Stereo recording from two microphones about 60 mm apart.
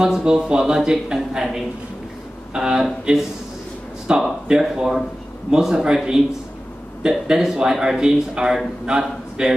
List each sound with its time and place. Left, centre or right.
0.0 s a man's voice: centre